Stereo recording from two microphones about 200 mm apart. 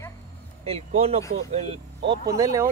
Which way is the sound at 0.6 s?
30° right (ahead or behind).